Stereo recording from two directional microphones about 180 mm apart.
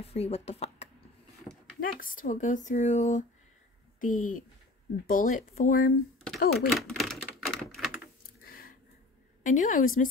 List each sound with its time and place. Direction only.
0.0 s speech: 35° left (ahead or behind)
1.8 s speech: 50° left (ahead or behind)
6.7 s typewriter: centre (ahead or behind)
8.0 s a sound: 55° left (ahead or behind)
9.4 s speech: 45° left (ahead or behind)